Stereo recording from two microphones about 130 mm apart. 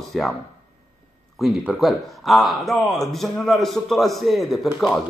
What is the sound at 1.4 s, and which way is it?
A man's voice, centre (ahead or behind).